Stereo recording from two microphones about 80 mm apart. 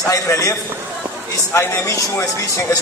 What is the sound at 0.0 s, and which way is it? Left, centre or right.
A man's voice, left.